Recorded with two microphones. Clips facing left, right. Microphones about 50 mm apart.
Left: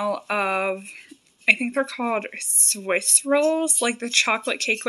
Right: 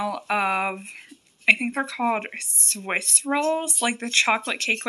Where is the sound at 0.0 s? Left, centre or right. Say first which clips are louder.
Even; centre.